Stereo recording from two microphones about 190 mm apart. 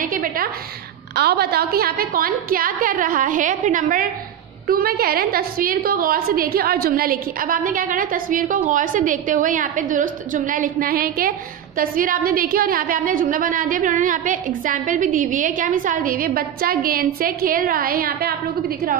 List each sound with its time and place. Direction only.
0.0 s a woman's voice: 45° right (ahead or behind)